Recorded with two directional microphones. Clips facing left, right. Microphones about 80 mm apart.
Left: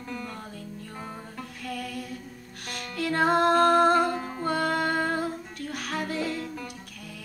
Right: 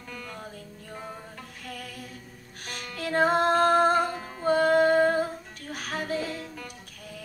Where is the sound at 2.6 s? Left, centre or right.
Right.